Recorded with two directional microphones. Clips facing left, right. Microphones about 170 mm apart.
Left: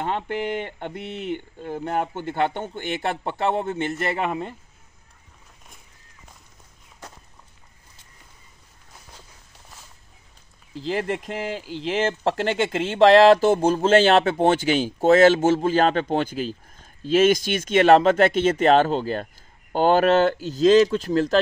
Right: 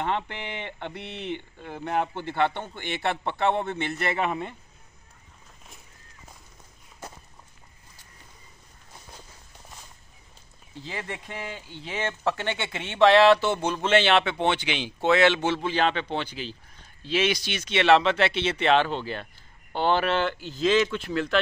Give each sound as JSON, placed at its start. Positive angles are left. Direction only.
{"t": 0.0, "sound": "speech", "side_deg": 45}
{"t": 10.7, "sound": "speech", "side_deg": 90}
{"t": 12.1, "sound": "speech", "side_deg": 35}